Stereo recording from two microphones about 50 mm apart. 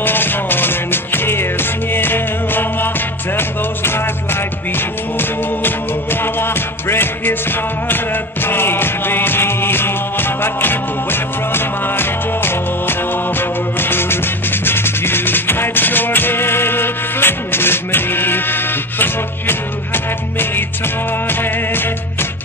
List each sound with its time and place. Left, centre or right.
0.0 s music: left
6.2 s music: left